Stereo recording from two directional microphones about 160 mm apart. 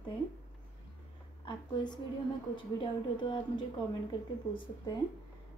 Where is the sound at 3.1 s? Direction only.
30° left (ahead or behind).